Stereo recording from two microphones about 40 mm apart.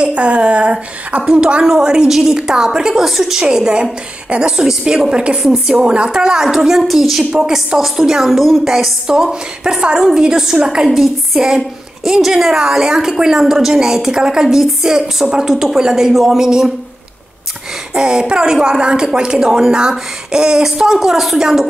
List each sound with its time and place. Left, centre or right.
0.0 s a woman's voice: right; by 3.4 s centre
3.4 s a woman's voice: right
5.4 s a woman's voice: centre
5.8 s a woman's voice: right
8.3 s a woman's voice: centre
8.6 s a woman's voice: centre
17.9 s a woman's voice: centre